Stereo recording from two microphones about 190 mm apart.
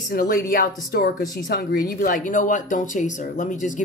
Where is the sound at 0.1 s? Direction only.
50° left (ahead or behind).